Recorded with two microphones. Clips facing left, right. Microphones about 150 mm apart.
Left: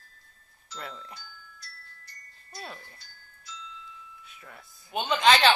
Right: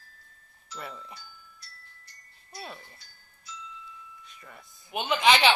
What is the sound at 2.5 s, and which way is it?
Speech, 5° right (ahead or behind).